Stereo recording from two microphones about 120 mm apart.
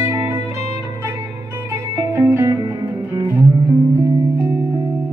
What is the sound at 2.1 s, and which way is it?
Music, 25° right (ahead or behind).